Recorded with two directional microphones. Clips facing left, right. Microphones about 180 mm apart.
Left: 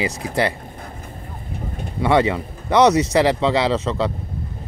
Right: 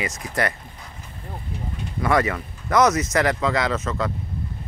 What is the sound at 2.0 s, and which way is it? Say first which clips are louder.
Speech: left 4 dB; 25° left (ahead or behind).